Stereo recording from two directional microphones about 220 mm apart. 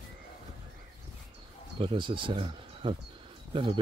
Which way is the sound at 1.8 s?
20° right (ahead or behind).